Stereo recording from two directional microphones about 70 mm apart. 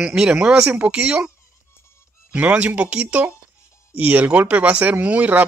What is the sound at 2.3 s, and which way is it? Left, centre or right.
Speech, centre.